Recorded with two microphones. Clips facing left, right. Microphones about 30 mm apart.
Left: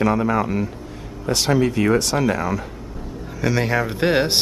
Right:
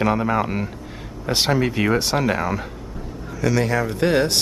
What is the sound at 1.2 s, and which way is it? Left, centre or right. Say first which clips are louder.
Speech: left 1 dB; right.